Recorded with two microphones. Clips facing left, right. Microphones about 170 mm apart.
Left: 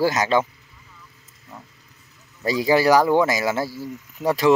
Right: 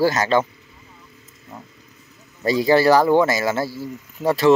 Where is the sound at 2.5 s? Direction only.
10° left (ahead or behind).